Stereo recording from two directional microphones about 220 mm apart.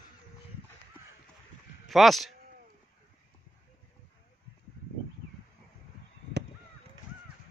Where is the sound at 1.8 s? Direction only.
Centre (ahead or behind).